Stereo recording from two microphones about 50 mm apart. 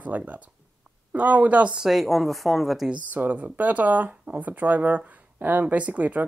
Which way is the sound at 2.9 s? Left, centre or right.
Right.